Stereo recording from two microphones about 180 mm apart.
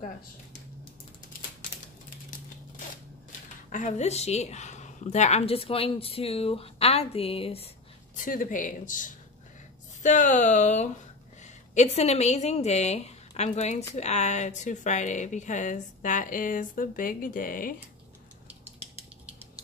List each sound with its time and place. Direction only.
3.3 s speech: 45° left (ahead or behind)
8.2 s a woman's voice: 50° left (ahead or behind)